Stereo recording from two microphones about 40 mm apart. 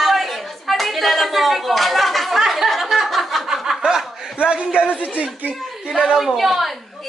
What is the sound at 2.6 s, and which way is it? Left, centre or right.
Chuckle, centre.